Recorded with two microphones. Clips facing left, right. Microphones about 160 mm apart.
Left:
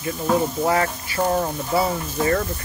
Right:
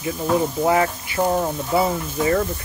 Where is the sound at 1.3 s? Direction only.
5° right (ahead or behind).